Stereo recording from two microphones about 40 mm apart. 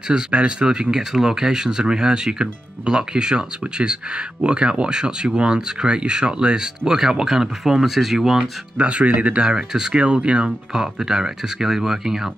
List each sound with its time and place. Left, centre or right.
0.1 s speech: right; by 8.4 s centre
8.4 s speech: right
9.9 s speech: right; by 12.3 s centre